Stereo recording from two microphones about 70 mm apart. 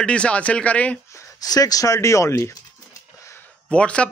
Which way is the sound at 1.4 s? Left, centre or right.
Left.